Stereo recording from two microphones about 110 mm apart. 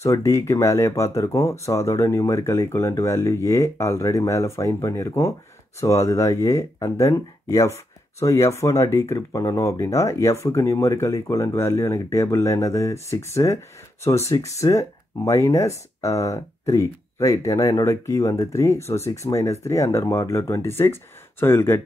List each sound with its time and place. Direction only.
0.0 s speech: 30° left (ahead or behind)